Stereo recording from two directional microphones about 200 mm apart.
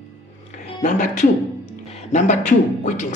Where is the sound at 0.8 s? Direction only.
40° left (ahead or behind).